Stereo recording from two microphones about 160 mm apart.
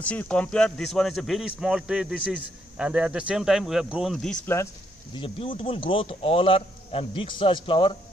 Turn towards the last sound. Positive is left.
turn(degrees=35)  # may be behind; listen again after turning